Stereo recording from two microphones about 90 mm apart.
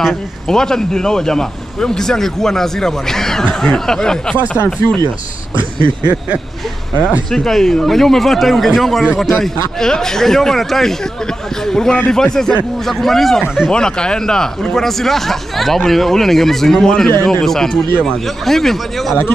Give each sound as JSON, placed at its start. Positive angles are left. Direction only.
{"t": 0.0, "sound": "speech", "side_deg": 5}
{"t": 4.8, "sound": "speech", "side_deg": 25}
{"t": 5.5, "sound": "speech", "side_deg": -65}
{"t": 7.2, "sound": "speech", "side_deg": 5}